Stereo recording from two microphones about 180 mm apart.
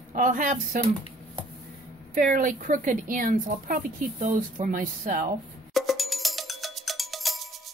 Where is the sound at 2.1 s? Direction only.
45° right (ahead or behind).